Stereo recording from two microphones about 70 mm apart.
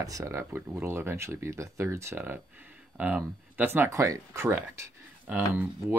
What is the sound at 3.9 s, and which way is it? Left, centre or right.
Speech, right.